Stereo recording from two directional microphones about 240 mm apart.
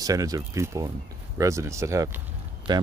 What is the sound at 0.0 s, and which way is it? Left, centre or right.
Speech, centre.